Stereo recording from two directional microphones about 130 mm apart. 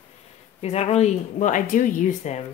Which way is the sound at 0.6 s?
55° left (ahead or behind).